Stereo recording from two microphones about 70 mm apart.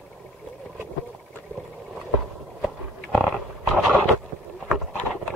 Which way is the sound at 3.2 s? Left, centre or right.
Centre.